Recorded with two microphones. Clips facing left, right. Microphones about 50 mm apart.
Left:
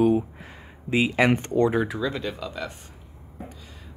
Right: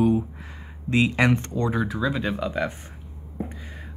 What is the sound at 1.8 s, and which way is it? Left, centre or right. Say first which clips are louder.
Speech: right 2 dB; centre.